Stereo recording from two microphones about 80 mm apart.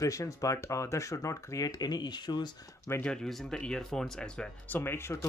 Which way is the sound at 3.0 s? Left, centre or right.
Centre.